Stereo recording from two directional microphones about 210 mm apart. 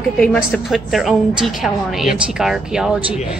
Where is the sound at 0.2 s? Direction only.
Centre (ahead or behind).